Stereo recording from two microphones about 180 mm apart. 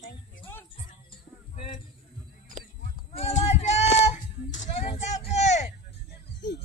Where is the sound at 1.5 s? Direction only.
30° left (ahead or behind).